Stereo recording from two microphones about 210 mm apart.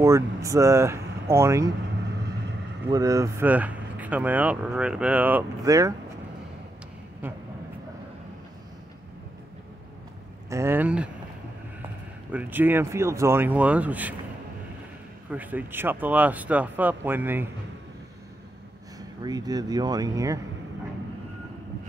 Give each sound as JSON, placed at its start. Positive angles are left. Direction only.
{"t": 0.0, "sound": "speech", "side_deg": -15}
{"t": 2.9, "sound": "speech", "side_deg": -15}
{"t": 10.5, "sound": "speech", "side_deg": -10}
{"t": 12.3, "sound": "speech", "side_deg": -10}
{"t": 15.3, "sound": "speech", "side_deg": -10}
{"t": 18.9, "sound": "speech", "side_deg": -20}